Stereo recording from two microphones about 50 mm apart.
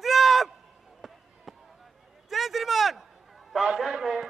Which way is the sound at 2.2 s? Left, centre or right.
Centre.